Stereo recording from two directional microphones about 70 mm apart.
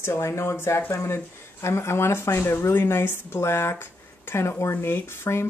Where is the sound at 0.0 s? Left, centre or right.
Left.